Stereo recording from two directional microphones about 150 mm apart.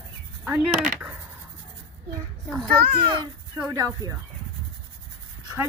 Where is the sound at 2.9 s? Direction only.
35° right (ahead or behind).